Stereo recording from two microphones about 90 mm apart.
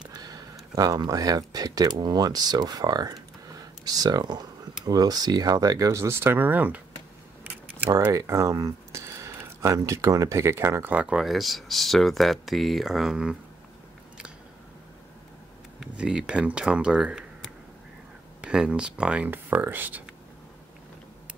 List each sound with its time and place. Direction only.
0.0 s speech: 45° right (ahead or behind); by 6.8 s 20° right (ahead or behind)
8.1 s speech: 35° right (ahead or behind)
10.8 s speech: 15° right (ahead or behind)
15.8 s speech: 10° right (ahead or behind)